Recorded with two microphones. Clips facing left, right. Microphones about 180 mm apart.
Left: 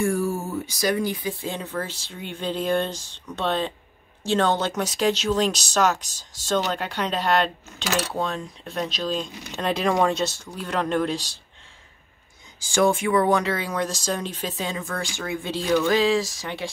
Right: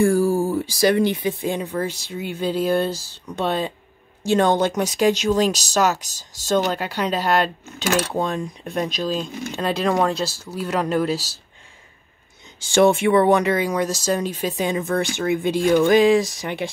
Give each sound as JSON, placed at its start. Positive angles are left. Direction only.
{"t": 0.0, "sound": "a sound", "side_deg": -35}
{"t": 1.0, "sound": "speech", "side_deg": -20}
{"t": 12.7, "sound": "speech", "side_deg": -25}